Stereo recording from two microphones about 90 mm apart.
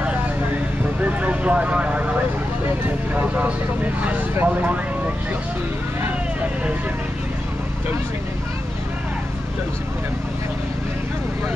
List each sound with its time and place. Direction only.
1.0 s vehicle: 15° right (ahead or behind)
3.2 s speech: 15° right (ahead or behind)